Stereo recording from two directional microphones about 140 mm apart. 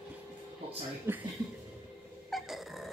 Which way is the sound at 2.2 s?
Centre (ahead or behind).